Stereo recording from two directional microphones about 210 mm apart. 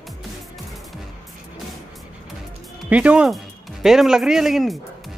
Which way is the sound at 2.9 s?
5° right (ahead or behind).